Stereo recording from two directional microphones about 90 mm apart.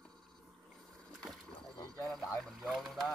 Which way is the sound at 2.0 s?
5° left (ahead or behind).